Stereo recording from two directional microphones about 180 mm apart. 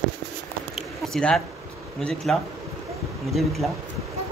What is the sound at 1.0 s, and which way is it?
Speech, 5° left (ahead or behind).